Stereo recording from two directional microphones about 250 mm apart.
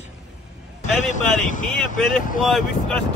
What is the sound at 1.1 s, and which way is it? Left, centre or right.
Speech, left.